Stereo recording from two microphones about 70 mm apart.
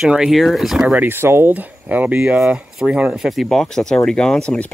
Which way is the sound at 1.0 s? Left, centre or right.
Right.